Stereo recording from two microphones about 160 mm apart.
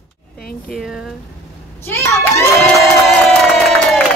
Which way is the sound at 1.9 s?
20° left (ahead or behind).